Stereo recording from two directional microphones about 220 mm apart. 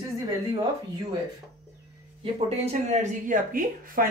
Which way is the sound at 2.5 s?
30° right (ahead or behind).